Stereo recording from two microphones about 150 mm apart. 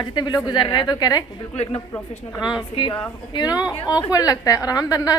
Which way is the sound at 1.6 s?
40° left (ahead or behind).